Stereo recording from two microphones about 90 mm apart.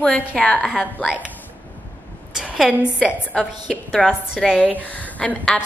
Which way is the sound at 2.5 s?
5° right (ahead or behind).